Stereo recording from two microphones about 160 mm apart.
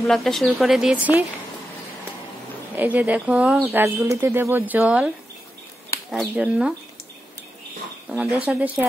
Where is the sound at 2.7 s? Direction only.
10° right (ahead or behind).